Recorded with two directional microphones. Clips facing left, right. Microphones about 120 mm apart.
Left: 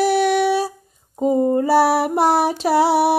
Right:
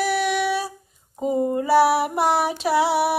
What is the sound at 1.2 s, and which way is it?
Female singing, 40° left (ahead or behind).